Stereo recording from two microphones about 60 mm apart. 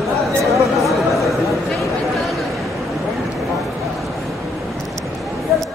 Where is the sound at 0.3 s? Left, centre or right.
Right.